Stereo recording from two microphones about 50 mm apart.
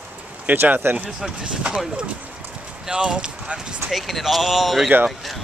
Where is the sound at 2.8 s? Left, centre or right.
Centre.